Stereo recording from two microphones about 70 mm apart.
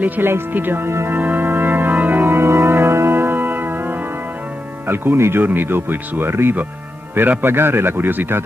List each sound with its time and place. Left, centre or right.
0.0 s music: right
4.8 s a man's voice: right